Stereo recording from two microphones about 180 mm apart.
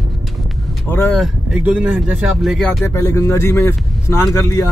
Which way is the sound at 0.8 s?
10° left (ahead or behind).